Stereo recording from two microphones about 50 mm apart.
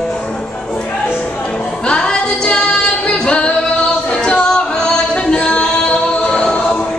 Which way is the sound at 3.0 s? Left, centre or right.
Left.